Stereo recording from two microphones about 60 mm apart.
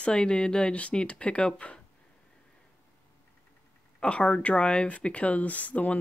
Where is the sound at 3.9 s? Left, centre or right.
Centre.